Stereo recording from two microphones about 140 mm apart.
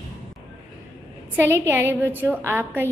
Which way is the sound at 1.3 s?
20° right (ahead or behind).